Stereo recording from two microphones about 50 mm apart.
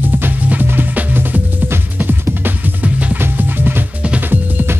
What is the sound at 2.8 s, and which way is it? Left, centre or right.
Music, right.